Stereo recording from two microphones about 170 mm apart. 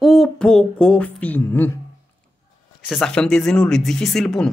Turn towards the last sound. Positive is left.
turn(degrees=5)  # may be behind; listen again after turning